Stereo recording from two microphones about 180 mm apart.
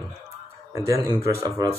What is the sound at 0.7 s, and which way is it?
Speech, 20° right (ahead or behind).